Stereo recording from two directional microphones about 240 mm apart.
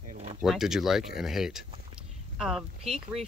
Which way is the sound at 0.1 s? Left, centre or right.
Right.